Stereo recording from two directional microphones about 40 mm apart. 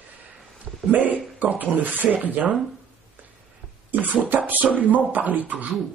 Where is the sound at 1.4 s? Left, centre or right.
Right.